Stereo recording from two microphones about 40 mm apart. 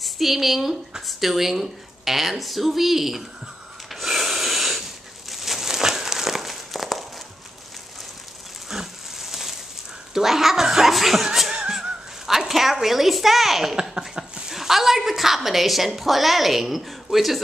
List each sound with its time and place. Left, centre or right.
0.0 s a woman's voice: centre
3.9 s snort: centre
5.3 s crumpling: centre
8.6 s a sound: centre
10.1 s speech: centre
11.5 s music: centre
12.8 s a woman's voice: centre
14.2 s a sound: right
14.5 s a woman's voice: centre